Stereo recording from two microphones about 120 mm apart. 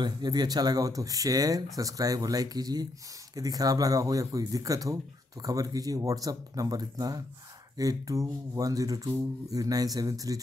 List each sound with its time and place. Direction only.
0.0 s speech: 35° right (ahead or behind)